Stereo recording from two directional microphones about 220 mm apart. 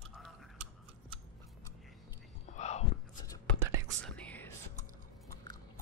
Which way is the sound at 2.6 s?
30° left (ahead or behind).